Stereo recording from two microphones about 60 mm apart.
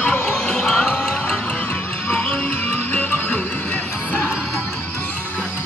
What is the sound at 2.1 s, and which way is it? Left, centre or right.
Music, left.